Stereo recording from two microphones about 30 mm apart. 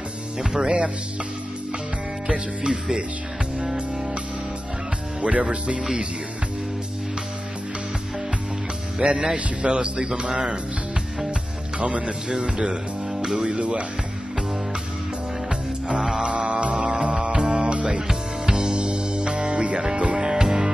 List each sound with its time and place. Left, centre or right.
0.4 s speech: right
0.7 s speech: right
2.3 s speech: right
5.2 s speech: right
8.9 s speech: right
9.6 s speech: right
11.8 s speech: right
13.5 s speech: right
16.0 s music: centre
16.3 s music: right
20.2 s music: right